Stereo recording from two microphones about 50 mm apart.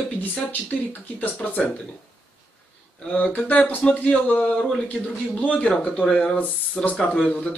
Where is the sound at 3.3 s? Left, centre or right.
Left.